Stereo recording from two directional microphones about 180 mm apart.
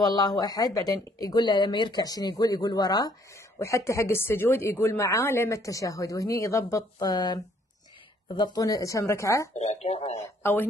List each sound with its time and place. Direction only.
0.0 s speech: 20° left (ahead or behind)
9.5 s speech: 40° left (ahead or behind)
10.1 s speech: 15° left (ahead or behind)